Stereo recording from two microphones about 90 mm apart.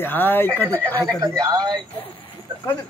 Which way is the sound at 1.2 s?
45° right (ahead or behind).